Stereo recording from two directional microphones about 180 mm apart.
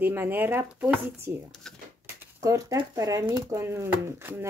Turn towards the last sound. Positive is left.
turn(degrees=-15)  # may be behind; listen again after turning